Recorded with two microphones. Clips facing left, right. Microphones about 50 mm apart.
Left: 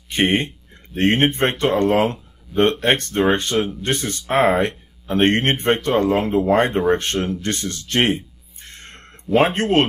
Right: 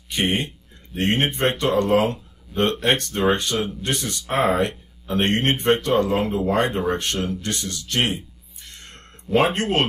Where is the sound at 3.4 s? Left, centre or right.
Left.